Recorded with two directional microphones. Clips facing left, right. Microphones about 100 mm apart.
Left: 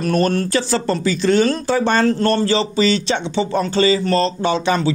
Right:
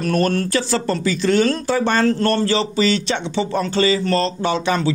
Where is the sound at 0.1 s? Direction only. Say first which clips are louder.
Left 1 dB; 20° left (ahead or behind).